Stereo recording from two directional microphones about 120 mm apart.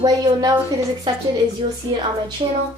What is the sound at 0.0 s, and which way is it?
Speech, 30° right (ahead or behind).